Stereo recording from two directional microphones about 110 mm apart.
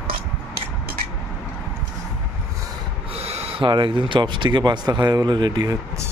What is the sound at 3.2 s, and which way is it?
Speech, 70° right (ahead or behind).